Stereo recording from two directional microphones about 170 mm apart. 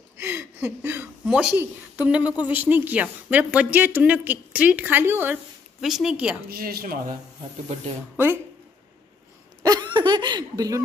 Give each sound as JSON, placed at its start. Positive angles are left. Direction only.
{"t": 0.2, "sound": "a woman's voice", "side_deg": -10}
{"t": 6.5, "sound": "speech", "side_deg": -60}
{"t": 9.6, "sound": "speech", "side_deg": -20}